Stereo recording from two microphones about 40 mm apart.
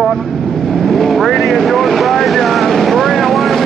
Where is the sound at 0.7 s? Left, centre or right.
Centre.